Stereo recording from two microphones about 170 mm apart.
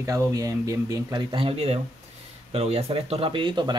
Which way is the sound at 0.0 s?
20° right (ahead or behind).